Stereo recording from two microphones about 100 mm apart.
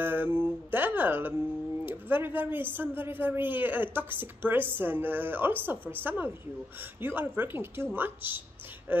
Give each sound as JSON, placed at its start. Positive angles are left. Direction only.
{"t": 0.0, "sound": "a woman's voice", "side_deg": -20}